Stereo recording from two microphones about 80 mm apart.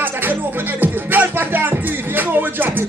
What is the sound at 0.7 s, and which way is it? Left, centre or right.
Music, right.